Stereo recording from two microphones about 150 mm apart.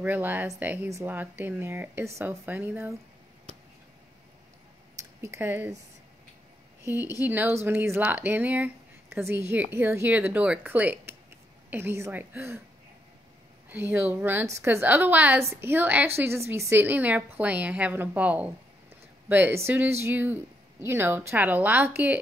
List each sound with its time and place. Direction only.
0.0 s a woman's voice: 10° right (ahead or behind)
5.2 s a woman's voice: 15° right (ahead or behind)
6.8 s a woman's voice: 15° right (ahead or behind)
13.7 s a woman's voice: 15° right (ahead or behind)